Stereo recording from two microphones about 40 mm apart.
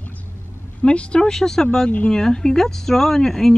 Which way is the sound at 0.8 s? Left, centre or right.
Left.